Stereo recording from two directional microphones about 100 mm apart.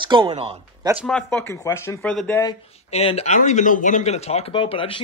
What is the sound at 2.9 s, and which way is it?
Speech, 90° left.